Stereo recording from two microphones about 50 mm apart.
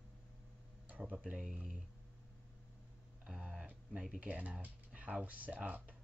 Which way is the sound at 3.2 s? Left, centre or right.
Centre.